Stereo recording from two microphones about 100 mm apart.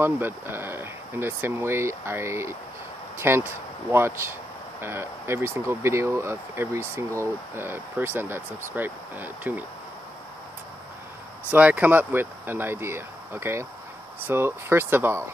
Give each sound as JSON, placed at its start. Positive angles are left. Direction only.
{"t": 0.0, "sound": "speech", "side_deg": -25}
{"t": 11.5, "sound": "speech", "side_deg": -15}